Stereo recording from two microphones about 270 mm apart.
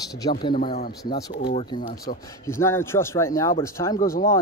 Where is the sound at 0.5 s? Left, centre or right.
Left.